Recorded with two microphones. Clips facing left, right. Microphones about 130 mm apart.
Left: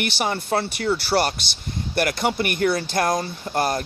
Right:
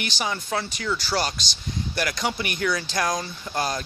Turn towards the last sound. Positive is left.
turn(degrees=55)  # may be behind; listen again after turning